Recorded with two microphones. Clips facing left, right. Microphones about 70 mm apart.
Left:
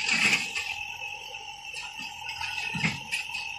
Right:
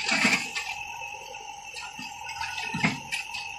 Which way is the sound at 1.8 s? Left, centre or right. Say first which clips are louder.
Right 2 dB; right.